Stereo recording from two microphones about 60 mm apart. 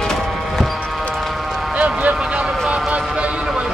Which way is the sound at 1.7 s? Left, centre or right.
Right.